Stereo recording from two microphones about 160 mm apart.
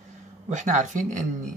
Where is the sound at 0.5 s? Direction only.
50° right (ahead or behind).